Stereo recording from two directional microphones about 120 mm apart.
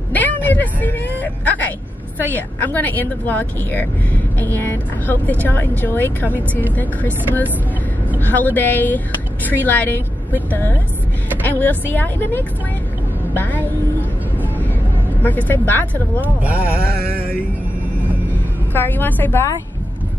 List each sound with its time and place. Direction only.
0.1 s vehicle: 15° left (ahead or behind)
2.3 s speech: 15° left (ahead or behind)
15.2 s speech: 15° left (ahead or behind)
16.2 s speech: 10° right (ahead or behind)
18.7 s speech: 15° left (ahead or behind)